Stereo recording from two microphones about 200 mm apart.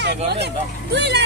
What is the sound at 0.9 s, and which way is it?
Speech, 55° right (ahead or behind).